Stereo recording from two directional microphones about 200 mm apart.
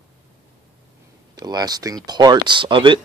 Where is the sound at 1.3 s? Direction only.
20° right (ahead or behind).